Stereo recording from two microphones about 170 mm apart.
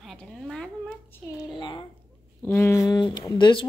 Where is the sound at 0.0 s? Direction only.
Centre (ahead or behind).